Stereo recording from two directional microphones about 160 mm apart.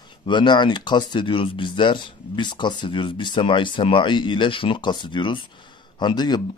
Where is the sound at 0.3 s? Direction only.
30° left (ahead or behind).